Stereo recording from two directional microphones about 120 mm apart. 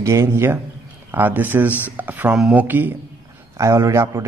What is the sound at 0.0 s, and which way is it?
Speech, 25° right (ahead or behind).